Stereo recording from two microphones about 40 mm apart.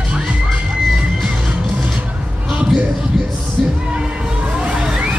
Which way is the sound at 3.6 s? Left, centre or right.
Centre.